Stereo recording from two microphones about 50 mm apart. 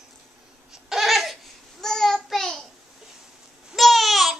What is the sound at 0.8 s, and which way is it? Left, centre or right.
Laughter, centre.